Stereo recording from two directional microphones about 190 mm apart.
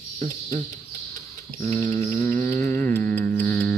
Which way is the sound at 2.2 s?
10° left (ahead or behind).